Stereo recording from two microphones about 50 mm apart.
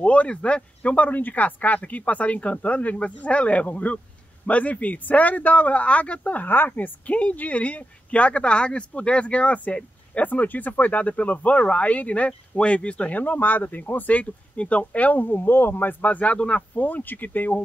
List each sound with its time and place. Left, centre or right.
0.0 s speech: left
13.2 s speech: left
16.7 s speech: left